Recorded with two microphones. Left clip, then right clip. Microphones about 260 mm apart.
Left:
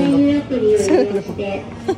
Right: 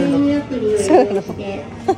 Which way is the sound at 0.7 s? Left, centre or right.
Centre.